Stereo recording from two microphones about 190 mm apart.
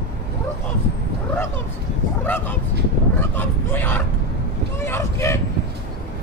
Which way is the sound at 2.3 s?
10° left (ahead or behind).